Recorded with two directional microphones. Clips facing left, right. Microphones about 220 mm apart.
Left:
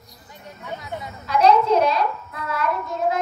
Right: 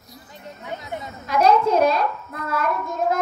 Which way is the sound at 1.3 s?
45° right (ahead or behind).